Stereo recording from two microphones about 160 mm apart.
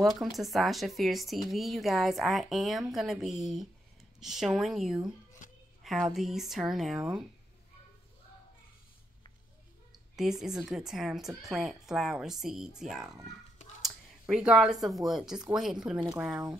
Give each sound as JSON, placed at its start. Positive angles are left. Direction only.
{"t": 0.0, "sound": "speech", "side_deg": 0}
{"t": 10.1, "sound": "speech", "side_deg": -5}